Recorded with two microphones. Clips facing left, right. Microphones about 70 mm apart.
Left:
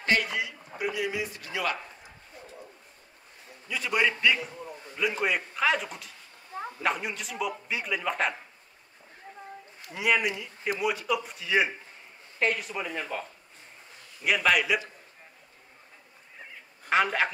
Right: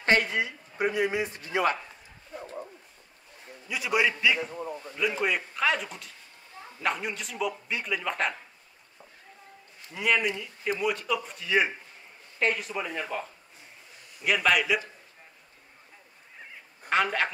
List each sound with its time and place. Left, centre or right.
0.0 s a man's voice: right
2.3 s bow-wow: right
3.6 s a man's voice: centre
4.4 s a man's voice: right
4.9 s a man's voice: centre
9.9 s a man's voice: centre
14.2 s a man's voice: centre
16.9 s a man's voice: centre